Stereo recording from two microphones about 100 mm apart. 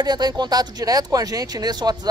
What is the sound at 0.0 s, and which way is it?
Speech, 45° right (ahead or behind).